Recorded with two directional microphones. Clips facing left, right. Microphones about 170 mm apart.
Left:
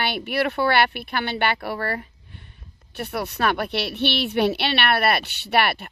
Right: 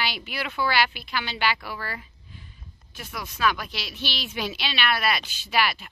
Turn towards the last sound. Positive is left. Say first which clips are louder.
# left 4 dB
turn(degrees=60)  # may be behind; listen again after turning